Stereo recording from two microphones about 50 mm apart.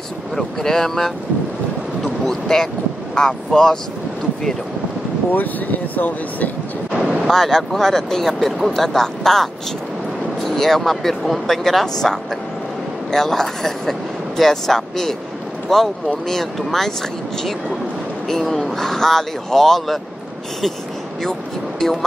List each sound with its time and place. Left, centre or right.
0.4 s speech: centre
2.2 s speech: centre
5.3 s speech: left
7.0 s vehicle: centre
7.2 s speech: centre
21.2 s speech: centre